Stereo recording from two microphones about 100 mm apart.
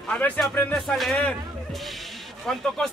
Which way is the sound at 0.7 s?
5° left (ahead or behind).